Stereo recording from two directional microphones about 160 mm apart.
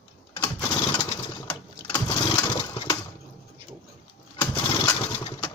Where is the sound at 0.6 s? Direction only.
25° left (ahead or behind).